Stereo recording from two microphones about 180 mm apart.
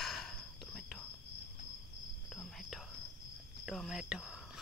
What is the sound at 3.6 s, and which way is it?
Cricket, centre (ahead or behind).